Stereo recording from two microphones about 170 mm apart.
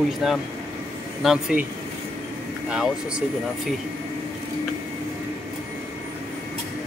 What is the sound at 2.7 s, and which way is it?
Speech, 5° right (ahead or behind).